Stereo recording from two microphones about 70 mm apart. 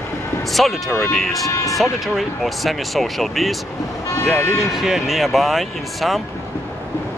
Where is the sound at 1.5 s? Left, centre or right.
Left.